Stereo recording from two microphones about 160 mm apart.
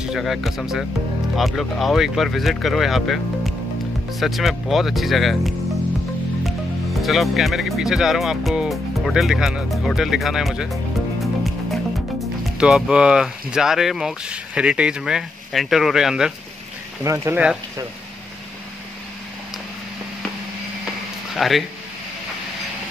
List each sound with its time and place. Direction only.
0.0 s speech: centre (ahead or behind)
17.0 s speech: 20° right (ahead or behind)
21.4 s speech: centre (ahead or behind)